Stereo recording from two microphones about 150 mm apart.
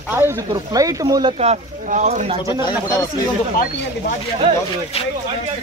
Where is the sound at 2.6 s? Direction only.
25° left (ahead or behind).